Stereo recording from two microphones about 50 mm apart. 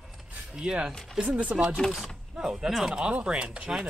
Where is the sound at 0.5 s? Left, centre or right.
Centre.